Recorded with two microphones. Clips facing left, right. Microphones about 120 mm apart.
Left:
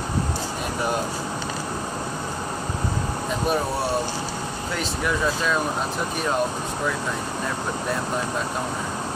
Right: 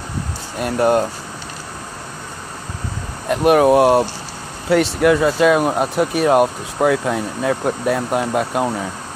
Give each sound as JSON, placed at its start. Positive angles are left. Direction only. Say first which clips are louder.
{"t": 0.7, "sound": "speech", "louder": "right 11 dB", "side_deg": -55}
{"t": 3.3, "sound": "speech", "louder": "right 13 dB", "side_deg": -85}
{"t": 4.6, "sound": "speech", "louder": "right 14 dB", "side_deg": -75}